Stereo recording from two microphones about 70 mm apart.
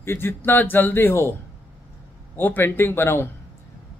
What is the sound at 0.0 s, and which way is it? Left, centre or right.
Speech, left.